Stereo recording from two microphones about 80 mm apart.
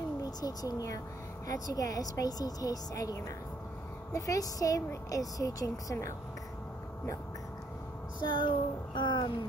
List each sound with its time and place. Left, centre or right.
0.2 s a woman's voice: left
8.2 s child singing: left